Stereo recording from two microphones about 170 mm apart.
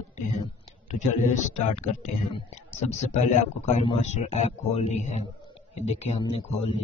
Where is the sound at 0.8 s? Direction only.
45° left (ahead or behind).